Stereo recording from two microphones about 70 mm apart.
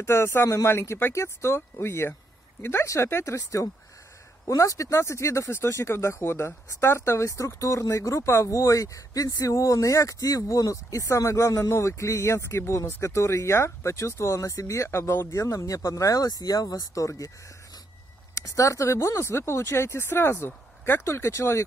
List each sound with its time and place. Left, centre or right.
0.0 s speech: left
18.3 s speech: left